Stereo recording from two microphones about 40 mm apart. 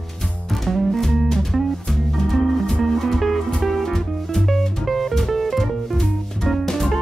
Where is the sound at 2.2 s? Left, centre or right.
Centre.